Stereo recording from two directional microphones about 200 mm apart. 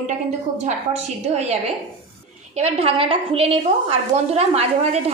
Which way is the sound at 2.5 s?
30° right (ahead or behind).